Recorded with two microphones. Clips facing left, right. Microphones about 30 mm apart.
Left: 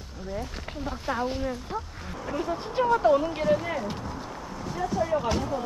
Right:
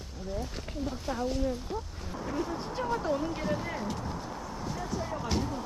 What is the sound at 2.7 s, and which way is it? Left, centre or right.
Speech, left.